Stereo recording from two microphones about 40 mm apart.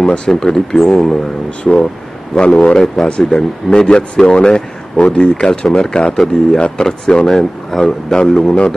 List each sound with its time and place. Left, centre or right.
0.3 s a man's voice: centre
1.6 s speech: left
2.7 s a man's voice: centre
6.1 s a man's voice: centre